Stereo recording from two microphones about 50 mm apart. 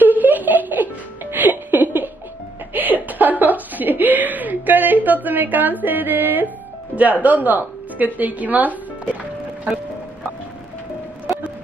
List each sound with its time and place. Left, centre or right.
0.0 s music: right
2.7 s chuckle: right
7.0 s a woman's voice: right